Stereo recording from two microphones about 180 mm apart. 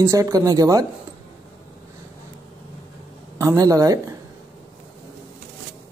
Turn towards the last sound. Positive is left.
turn(degrees=-20)  # may be behind; listen again after turning